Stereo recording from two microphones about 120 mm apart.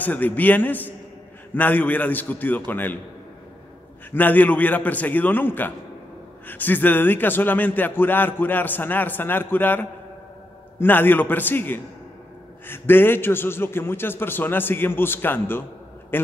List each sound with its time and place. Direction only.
0.0 s a man's voice: 15° left (ahead or behind)
4.1 s a man's voice: 15° left (ahead or behind)